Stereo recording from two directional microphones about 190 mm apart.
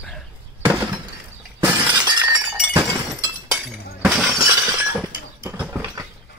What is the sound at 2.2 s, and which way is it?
Breaking, 10° right (ahead or behind).